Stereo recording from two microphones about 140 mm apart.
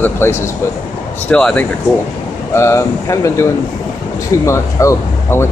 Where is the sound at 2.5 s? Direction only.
20° left (ahead or behind).